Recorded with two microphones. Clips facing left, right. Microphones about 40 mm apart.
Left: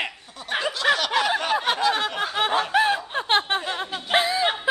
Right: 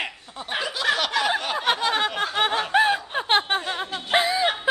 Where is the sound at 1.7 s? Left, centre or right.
Centre.